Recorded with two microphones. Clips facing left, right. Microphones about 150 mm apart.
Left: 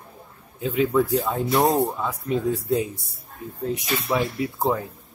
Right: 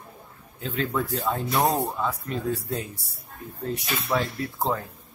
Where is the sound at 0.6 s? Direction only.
10° left (ahead or behind).